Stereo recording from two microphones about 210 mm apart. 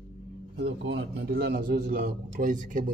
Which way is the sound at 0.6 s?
50° right (ahead or behind).